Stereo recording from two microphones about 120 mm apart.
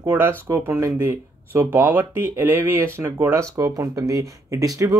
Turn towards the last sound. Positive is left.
turn(degrees=-25)  # may be behind; listen again after turning